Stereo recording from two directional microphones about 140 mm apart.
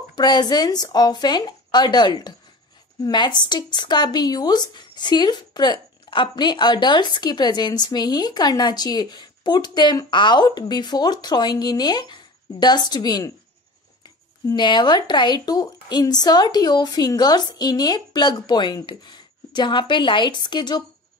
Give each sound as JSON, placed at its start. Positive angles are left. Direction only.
{"t": 0.1, "sound": "speech", "side_deg": 30}